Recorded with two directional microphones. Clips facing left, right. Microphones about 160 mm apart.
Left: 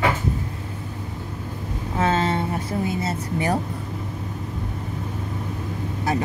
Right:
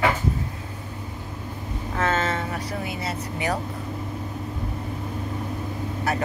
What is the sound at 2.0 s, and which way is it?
Vehicle, 30° left (ahead or behind).